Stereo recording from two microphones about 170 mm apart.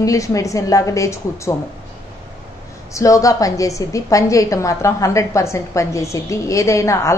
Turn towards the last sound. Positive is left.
turn(degrees=15)  # may be behind; listen again after turning